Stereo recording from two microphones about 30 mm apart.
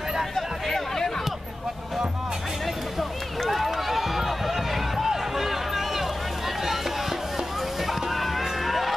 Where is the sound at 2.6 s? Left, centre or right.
Centre.